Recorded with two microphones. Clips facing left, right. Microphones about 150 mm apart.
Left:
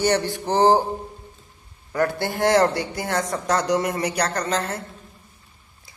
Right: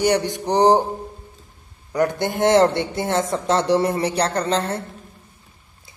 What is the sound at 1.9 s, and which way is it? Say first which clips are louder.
A man's voice: right 2 dB; 20° right (ahead or behind).